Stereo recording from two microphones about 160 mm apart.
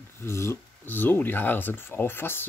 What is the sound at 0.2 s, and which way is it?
Speech, 15° left (ahead or behind).